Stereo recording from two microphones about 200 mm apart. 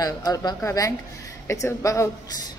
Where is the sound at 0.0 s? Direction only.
20° left (ahead or behind).